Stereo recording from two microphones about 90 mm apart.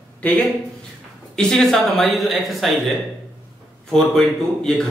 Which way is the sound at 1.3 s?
5° left (ahead or behind).